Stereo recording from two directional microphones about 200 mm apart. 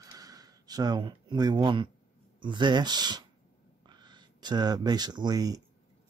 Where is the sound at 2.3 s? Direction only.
25° right (ahead or behind).